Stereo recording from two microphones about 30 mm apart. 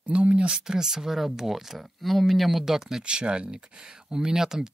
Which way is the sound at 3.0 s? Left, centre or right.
Right.